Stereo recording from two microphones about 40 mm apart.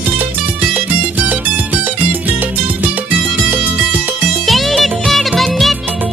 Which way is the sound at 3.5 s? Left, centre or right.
Right.